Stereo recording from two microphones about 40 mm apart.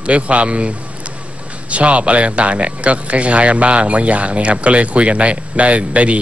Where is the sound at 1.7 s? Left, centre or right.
Right.